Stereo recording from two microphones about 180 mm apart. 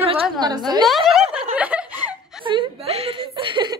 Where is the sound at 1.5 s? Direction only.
10° right (ahead or behind).